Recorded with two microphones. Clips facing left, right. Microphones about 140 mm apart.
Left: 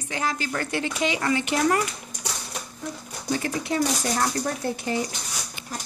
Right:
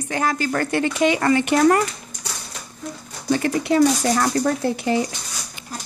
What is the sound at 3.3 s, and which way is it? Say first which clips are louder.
Speech: right 7 dB; 70° right (ahead or behind).